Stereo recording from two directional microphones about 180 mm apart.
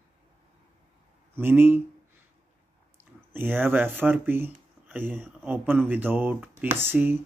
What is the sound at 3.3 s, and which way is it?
Speech, 10° right (ahead or behind).